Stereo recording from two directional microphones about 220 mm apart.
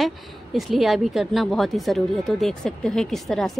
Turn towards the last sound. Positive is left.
turn(degrees=0)  # may be behind; listen again after turning